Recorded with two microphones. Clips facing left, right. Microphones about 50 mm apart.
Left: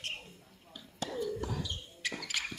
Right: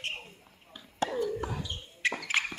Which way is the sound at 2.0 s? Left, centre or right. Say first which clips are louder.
Right 8 dB; right.